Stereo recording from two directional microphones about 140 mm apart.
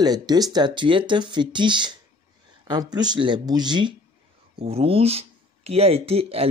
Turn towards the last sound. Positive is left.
turn(degrees=-45)  # may be behind; listen again after turning